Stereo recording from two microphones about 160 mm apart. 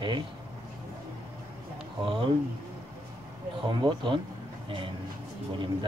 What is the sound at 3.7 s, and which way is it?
A man's voice, 30° right (ahead or behind).